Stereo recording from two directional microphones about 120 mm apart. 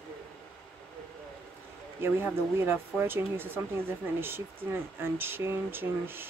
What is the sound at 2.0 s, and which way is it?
Speech, 20° right (ahead or behind).